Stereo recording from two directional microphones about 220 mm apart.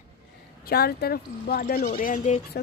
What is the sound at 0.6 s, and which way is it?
Speech, 45° left (ahead or behind).